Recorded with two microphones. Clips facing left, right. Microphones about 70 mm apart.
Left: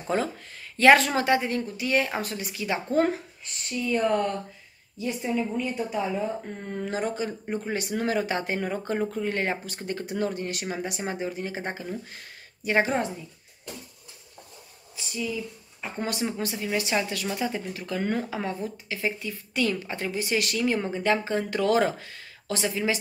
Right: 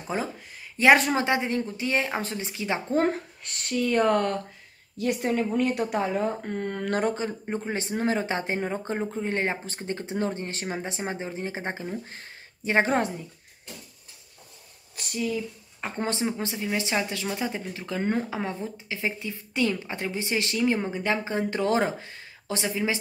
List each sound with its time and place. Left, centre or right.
0.0 s speech: centre; by 3.2 s right
3.4 s speech: right
7.2 s speech: right
15.1 s speech: right
15.8 s speech: right